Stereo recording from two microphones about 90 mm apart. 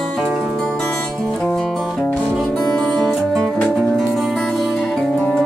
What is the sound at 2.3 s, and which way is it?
Music, 5° left (ahead or behind).